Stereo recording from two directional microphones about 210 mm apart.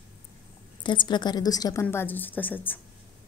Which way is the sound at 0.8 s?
20° left (ahead or behind).